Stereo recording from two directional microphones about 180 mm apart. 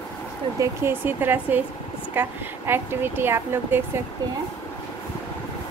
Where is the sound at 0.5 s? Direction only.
10° right (ahead or behind).